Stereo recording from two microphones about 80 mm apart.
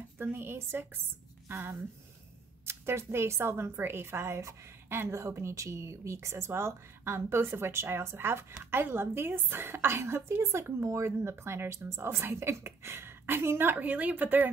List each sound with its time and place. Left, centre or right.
0.2 s a woman's voice: right